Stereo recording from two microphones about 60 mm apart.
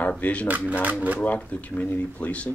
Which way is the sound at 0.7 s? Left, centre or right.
Right.